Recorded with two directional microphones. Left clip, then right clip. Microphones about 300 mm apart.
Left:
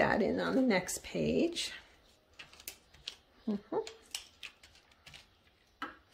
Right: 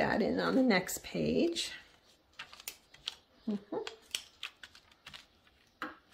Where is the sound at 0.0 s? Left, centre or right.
Centre.